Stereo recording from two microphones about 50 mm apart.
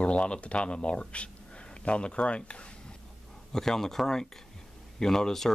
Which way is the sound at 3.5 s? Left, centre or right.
Centre.